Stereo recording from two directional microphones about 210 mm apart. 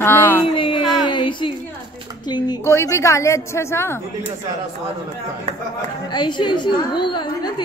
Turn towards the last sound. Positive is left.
turn(degrees=20)  # may be behind; listen again after turning